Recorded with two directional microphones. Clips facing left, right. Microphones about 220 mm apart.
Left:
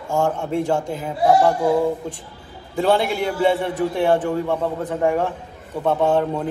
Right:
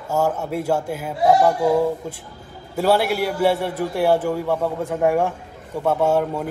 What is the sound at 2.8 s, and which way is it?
A man's voice, 5° right (ahead or behind).